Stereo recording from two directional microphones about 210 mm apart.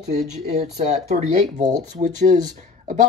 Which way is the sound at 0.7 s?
35° right (ahead or behind).